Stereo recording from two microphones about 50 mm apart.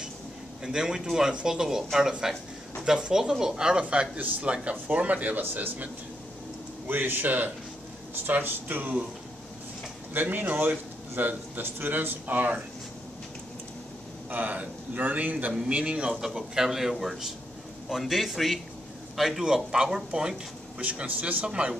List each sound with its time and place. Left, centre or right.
0.7 s speech: centre; by 5.4 s right
5.4 s a man's voice: right
6.9 s speech: right
10.1 s speech: right
14.3 s a man's voice: right; by 20.3 s centre
20.8 s speech: right